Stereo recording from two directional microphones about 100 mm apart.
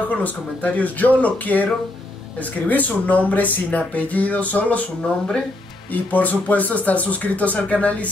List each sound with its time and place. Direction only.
0.1 s speech: 15° left (ahead or behind)
2.7 s speech: 15° left (ahead or behind)